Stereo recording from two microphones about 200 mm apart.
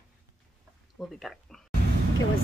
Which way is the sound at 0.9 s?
Centre (ahead or behind).